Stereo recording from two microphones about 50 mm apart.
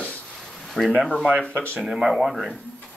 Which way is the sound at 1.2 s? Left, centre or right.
Left.